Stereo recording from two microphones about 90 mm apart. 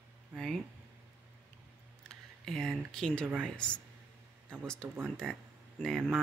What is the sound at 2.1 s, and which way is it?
Speech, 5° left (ahead or behind).